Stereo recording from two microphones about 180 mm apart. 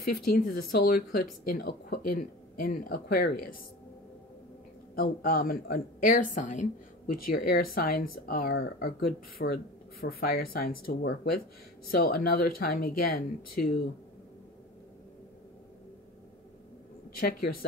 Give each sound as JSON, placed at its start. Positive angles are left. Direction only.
{"t": 0.1, "sound": "speech", "side_deg": 55}
{"t": 4.9, "sound": "speech", "side_deg": 55}
{"t": 17.2, "sound": "a woman's voice", "side_deg": 55}